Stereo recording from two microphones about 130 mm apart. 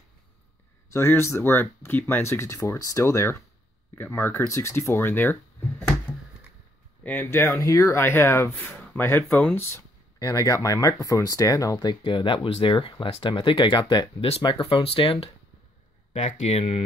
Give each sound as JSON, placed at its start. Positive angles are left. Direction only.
{"t": 0.9, "sound": "speech", "side_deg": 20}
{"t": 7.0, "sound": "speech", "side_deg": 15}
{"t": 16.1, "sound": "speech", "side_deg": 60}